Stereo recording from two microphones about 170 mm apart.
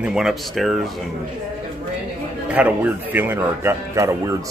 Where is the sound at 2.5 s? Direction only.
10° right (ahead or behind).